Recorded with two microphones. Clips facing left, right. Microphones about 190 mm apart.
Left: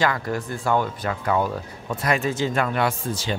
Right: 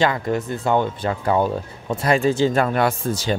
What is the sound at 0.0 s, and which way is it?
Speech, 20° right (ahead or behind).